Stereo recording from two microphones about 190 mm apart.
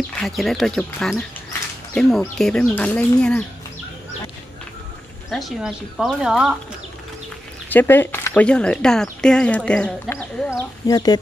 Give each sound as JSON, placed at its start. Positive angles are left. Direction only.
{"t": 0.2, "sound": "speech", "side_deg": 0}
{"t": 5.3, "sound": "speech", "side_deg": 0}
{"t": 7.7, "sound": "speech", "side_deg": 10}
{"t": 10.9, "sound": "speech", "side_deg": 20}